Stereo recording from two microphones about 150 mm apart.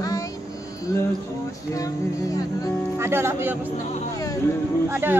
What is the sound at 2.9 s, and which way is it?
Speech, 15° right (ahead or behind).